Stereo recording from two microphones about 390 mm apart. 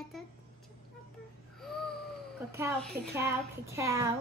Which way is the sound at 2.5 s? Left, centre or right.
Centre.